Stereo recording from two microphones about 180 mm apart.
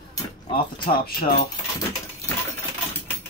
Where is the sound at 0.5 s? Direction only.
30° left (ahead or behind).